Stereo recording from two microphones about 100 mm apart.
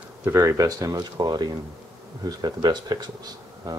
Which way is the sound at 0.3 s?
30° right (ahead or behind).